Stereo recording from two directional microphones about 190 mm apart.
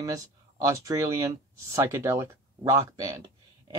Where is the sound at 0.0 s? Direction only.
20° right (ahead or behind).